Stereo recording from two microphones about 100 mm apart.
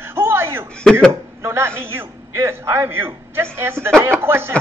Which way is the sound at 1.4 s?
25° right (ahead or behind).